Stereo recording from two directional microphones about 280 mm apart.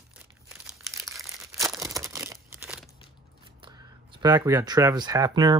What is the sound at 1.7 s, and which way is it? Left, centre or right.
Tearing, centre.